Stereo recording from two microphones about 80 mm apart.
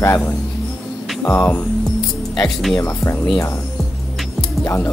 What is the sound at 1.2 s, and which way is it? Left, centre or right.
Music, left.